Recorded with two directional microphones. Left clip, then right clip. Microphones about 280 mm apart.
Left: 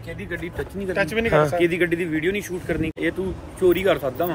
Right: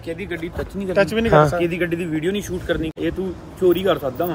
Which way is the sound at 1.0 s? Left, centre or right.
Right.